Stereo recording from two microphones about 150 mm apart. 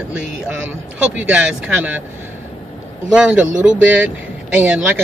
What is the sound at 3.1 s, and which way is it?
Speech, 5° right (ahead or behind).